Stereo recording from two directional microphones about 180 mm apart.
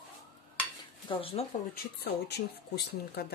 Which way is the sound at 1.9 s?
65° left (ahead or behind).